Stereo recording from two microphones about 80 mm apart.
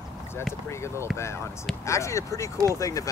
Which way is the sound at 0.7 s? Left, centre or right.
Left.